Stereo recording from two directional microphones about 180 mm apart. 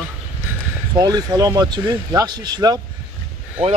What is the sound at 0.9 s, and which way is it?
Speech, 20° right (ahead or behind).